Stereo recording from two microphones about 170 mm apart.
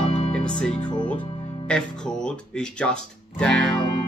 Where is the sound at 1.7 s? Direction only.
5° left (ahead or behind).